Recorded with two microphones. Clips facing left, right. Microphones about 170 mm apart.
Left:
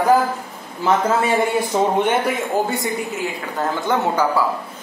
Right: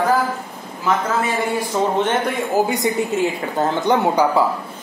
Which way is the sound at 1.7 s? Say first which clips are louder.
Left 1 dB; 10° left (ahead or behind).